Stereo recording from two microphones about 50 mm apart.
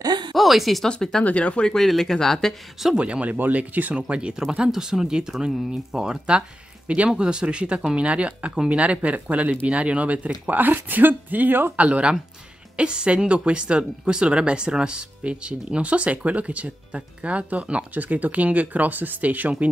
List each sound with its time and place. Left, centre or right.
0.3 s a sound: centre
0.8 s speech: centre
1.2 s speech: left
1.7 s speech: centre
3.0 s speech: right
4.1 s speech: right
4.6 s speech: centre; by 11.7 s right
11.7 s speech: right